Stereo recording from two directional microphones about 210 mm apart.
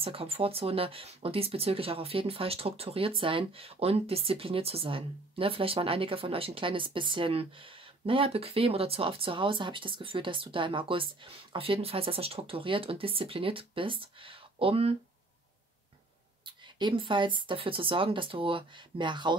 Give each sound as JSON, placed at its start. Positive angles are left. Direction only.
{"t": 0.0, "sound": "speech", "side_deg": -25}
{"t": 16.4, "sound": "speech", "side_deg": -20}